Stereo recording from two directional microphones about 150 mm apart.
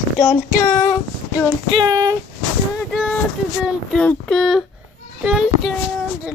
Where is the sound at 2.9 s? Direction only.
Centre (ahead or behind).